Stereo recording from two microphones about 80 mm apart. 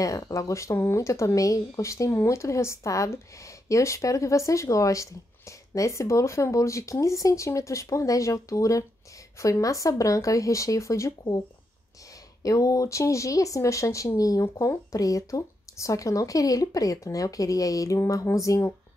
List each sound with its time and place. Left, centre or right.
0.0 s speech: left
12.4 s speech: left